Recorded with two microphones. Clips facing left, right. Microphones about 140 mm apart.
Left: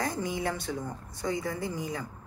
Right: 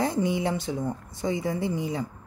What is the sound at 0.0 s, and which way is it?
A woman's voice, 25° right (ahead or behind).